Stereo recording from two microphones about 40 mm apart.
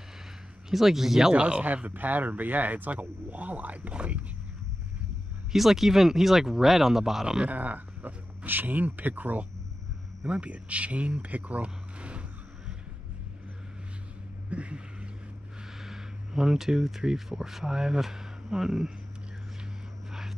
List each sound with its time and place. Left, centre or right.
0.7 s speech: centre
1.3 s speech: right
1.6 s speech: right
5.5 s speech: centre
7.4 s speech: right
10.2 s speech: right
14.5 s a sound: right
15.8 s speech: centre
20.1 s vehicle: centre